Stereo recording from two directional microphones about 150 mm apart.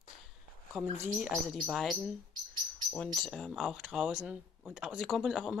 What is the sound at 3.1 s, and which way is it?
Speech, 5° left (ahead or behind).